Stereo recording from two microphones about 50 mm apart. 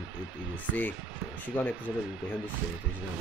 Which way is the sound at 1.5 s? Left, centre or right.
Left.